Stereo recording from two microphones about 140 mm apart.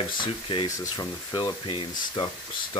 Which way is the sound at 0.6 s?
25° left (ahead or behind).